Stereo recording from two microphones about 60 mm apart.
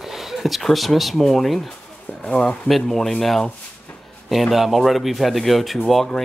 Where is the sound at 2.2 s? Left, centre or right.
Centre.